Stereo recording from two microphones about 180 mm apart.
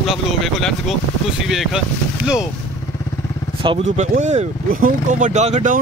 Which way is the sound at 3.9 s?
40° right (ahead or behind).